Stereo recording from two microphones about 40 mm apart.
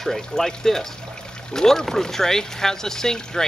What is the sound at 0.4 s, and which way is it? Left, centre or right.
Speech, centre.